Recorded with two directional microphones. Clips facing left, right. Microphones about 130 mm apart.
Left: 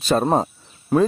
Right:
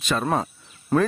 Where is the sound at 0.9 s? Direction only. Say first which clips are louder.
Left 3 dB; 10° left (ahead or behind).